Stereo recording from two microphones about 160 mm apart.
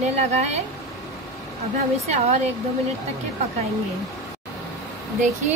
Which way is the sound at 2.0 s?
40° right (ahead or behind).